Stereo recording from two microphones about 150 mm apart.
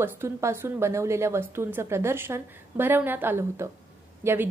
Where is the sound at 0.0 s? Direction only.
15° right (ahead or behind).